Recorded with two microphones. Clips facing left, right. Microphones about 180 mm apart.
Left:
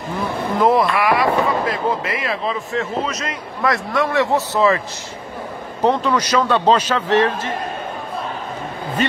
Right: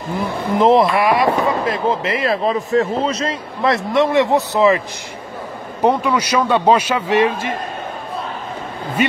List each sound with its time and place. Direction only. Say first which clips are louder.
0.6 s a man's voice: right 3 dB; 25° right (ahead or behind)